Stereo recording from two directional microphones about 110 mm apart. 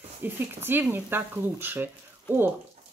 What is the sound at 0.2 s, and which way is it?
Speech, 20° right (ahead or behind).